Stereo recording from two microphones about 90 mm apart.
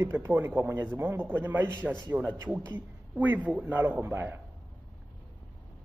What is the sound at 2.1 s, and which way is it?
A man's voice, 10° right (ahead or behind).